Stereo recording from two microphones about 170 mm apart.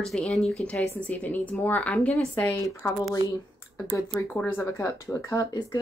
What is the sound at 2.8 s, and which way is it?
Speech, 15° left (ahead or behind).